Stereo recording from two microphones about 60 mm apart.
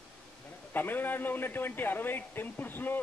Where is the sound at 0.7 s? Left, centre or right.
Left.